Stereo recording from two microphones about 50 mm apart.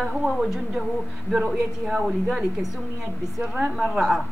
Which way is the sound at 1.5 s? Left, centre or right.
Centre.